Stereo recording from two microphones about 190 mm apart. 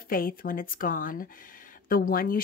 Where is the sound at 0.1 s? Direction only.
50° left (ahead or behind).